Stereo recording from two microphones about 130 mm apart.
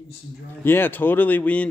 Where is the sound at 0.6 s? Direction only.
15° left (ahead or behind).